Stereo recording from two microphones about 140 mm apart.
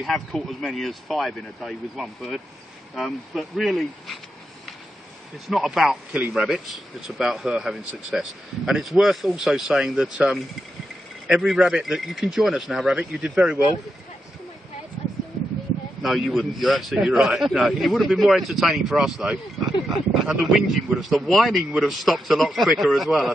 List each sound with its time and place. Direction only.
0.0 s speech: centre (ahead or behind)
5.5 s speech: centre (ahead or behind)
16.0 s speech: centre (ahead or behind)